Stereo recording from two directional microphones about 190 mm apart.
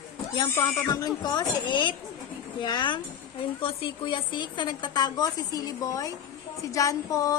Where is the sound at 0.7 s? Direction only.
15° left (ahead or behind).